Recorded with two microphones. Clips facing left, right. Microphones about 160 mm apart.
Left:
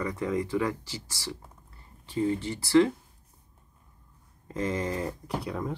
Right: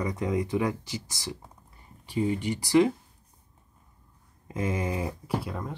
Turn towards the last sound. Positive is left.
turn(degrees=0)  # may be behind; listen again after turning